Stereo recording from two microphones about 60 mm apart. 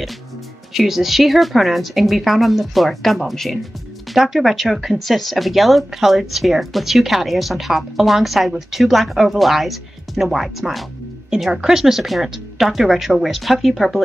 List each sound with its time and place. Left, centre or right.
0.7 s speech: centre